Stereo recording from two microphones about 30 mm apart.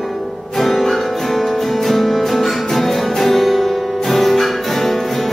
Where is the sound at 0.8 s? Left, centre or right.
Centre.